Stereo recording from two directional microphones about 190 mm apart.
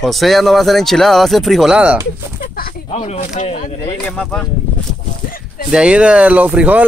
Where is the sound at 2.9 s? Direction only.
35° left (ahead or behind).